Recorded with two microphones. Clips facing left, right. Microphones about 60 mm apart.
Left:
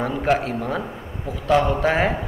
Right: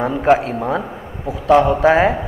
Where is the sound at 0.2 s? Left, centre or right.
Right.